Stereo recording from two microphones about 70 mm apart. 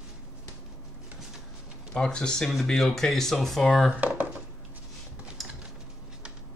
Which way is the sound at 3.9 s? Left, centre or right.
Right.